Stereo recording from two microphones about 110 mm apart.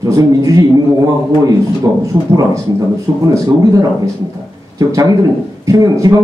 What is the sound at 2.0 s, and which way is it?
Speech, 30° right (ahead or behind).